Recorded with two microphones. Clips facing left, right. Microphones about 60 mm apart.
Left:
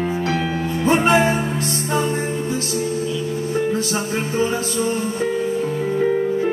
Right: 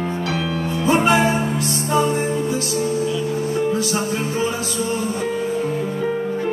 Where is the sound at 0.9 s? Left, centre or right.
Left.